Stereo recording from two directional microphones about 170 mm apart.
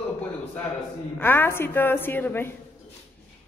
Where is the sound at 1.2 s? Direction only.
10° left (ahead or behind).